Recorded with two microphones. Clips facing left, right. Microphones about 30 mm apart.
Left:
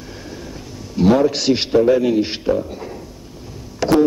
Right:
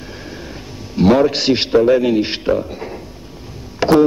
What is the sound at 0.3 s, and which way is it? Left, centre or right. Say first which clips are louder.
A man's voice: right 1 dB; right.